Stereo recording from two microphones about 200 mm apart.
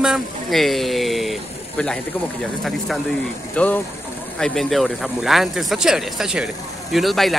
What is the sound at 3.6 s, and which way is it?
Speech, 5° left (ahead or behind).